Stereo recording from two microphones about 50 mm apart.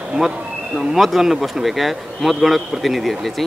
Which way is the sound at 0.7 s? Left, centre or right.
Centre.